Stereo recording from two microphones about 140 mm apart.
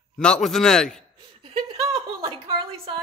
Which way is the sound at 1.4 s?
40° right (ahead or behind).